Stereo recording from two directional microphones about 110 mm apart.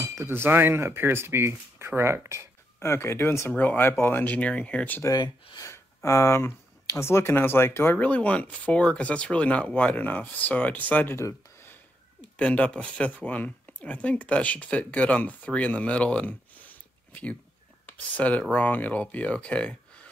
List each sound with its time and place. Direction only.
0.1 s speech: 25° right (ahead or behind)
2.8 s speech: 25° left (ahead or behind)
5.0 s speech: 40° left (ahead or behind)
6.0 s speech: 25° left (ahead or behind)
11.2 s a sound: 20° left (ahead or behind)
12.4 s speech: 10° left (ahead or behind)